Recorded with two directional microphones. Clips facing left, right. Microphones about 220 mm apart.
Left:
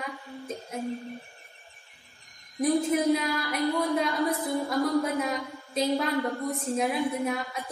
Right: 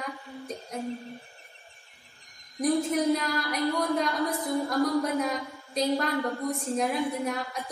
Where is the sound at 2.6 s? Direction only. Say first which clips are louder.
Left 1 dB; centre (ahead or behind).